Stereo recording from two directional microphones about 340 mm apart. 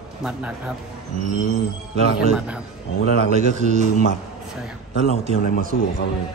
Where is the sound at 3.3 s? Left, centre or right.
Right.